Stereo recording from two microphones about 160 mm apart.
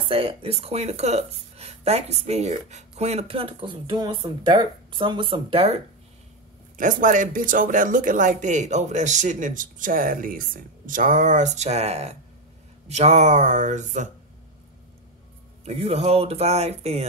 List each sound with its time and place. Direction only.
0.1 s speech: 35° right (ahead or behind)
6.8 s speech: 55° right (ahead or behind)
15.6 s speech: 40° right (ahead or behind)